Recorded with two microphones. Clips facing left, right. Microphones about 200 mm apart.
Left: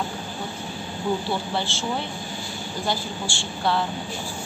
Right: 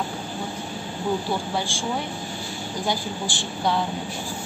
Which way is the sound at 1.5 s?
10° right (ahead or behind).